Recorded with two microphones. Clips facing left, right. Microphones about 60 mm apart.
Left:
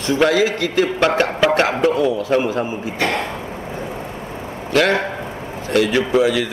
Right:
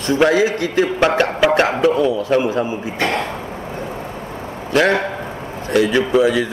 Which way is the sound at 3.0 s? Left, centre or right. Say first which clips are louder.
Right 1 dB; right.